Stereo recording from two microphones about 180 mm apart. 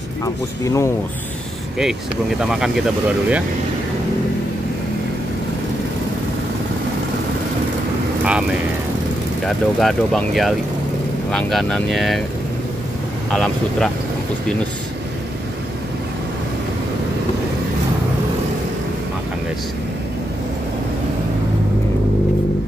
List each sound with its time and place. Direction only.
0.2 s speech: 15° left (ahead or behind)
2.4 s speech: 5° right (ahead or behind)
9.5 s speech: centre (ahead or behind)
13.3 s speech: 5° left (ahead or behind)